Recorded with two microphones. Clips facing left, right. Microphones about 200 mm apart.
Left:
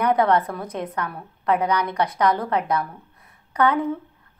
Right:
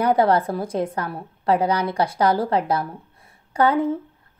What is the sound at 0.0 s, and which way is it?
A woman's voice, 30° right (ahead or behind).